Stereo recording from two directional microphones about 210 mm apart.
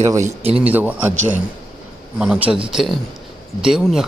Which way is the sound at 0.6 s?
5° right (ahead or behind).